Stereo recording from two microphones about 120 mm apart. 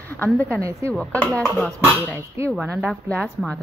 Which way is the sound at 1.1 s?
10° left (ahead or behind).